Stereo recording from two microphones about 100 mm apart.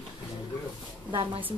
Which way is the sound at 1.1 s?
55° right (ahead or behind).